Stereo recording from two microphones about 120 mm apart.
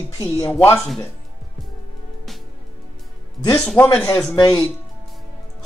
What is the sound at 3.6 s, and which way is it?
Speech, 15° left (ahead or behind).